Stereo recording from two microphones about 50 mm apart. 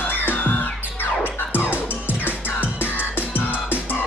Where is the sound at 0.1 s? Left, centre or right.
Left.